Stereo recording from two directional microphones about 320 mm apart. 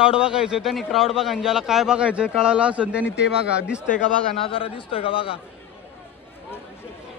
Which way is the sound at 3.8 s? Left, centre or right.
Centre.